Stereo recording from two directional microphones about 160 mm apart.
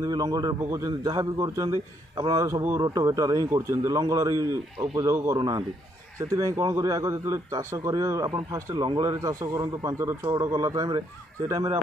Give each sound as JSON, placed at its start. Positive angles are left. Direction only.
{"t": 0.0, "sound": "speech", "side_deg": -25}
{"t": 5.4, "sound": "speech", "side_deg": -30}